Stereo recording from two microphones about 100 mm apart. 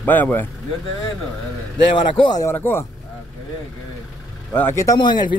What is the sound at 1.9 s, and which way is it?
Speech, 55° left (ahead or behind).